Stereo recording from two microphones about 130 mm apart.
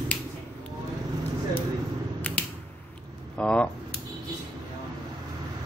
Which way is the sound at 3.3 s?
10° left (ahead or behind).